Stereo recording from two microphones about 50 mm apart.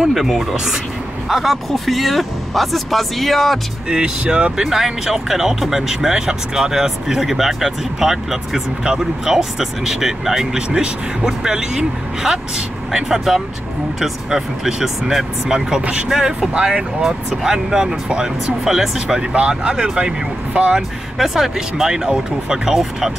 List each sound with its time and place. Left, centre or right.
0.0 s speech: centre
3.9 s speech: centre
21.2 s speech: centre